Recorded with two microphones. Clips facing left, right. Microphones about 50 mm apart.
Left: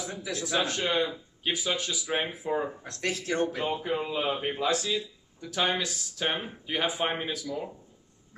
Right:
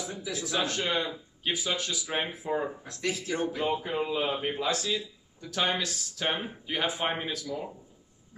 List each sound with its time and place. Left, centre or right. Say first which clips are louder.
0.4 s speech: left 2 dB; centre
2.9 s speech: even; left
3.3 s speech: right 1 dB; centre